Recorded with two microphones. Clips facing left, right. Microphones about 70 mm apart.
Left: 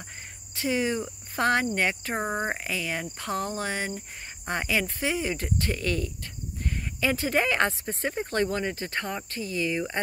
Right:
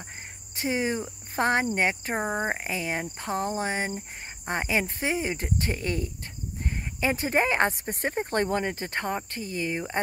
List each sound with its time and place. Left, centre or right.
0.6 s speech: right
1.3 s cricket: right
1.8 s speech: right
2.1 s speech: centre
2.5 s speech: right